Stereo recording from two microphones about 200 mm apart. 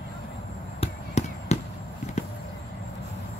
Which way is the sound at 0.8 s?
35° left (ahead or behind).